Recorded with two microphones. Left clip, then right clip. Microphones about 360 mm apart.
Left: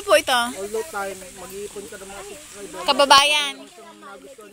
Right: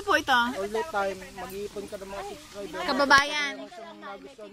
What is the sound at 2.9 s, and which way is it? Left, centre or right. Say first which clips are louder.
Speech: left 7 dB; centre.